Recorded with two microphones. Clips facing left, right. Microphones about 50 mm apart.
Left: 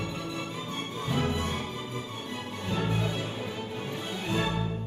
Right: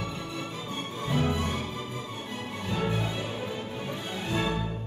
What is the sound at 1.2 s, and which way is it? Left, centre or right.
Music, right.